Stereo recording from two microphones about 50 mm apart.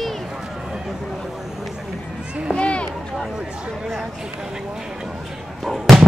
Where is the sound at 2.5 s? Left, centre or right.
Left.